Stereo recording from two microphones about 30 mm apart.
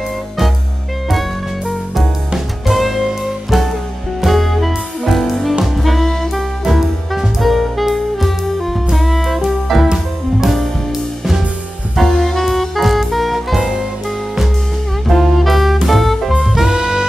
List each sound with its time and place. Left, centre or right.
1.7 s music: centre
4.3 s music: centre
5.8 s saxophone: centre
6.6 s music: centre
12.0 s music: centre
13.6 s music: centre
15.0 s saxophone: centre
15.9 s music: centre
16.6 s saxophone: right